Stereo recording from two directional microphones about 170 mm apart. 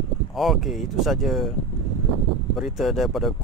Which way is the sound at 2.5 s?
Centre (ahead or behind).